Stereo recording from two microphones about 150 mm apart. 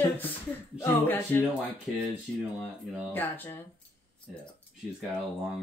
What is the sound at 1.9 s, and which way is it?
Speech, centre (ahead or behind).